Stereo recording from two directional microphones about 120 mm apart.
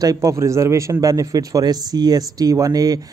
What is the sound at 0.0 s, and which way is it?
Speech, 30° right (ahead or behind).